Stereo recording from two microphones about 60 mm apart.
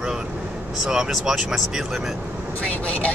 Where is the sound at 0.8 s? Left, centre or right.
Centre.